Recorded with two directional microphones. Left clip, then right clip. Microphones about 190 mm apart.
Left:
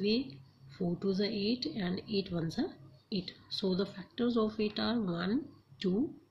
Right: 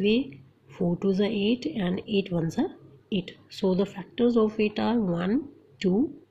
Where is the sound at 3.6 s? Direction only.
15° right (ahead or behind).